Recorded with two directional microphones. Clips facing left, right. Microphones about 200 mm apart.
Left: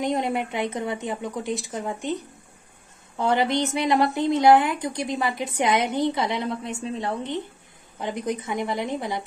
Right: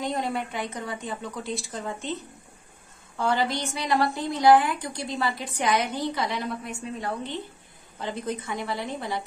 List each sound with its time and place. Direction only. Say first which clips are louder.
0.0 s a woman's voice: left 4 dB; 20° left (ahead or behind)
3.2 s a woman's voice: left 4 dB; 20° left (ahead or behind)